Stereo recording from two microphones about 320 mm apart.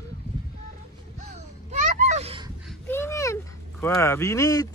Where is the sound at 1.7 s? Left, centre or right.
Right.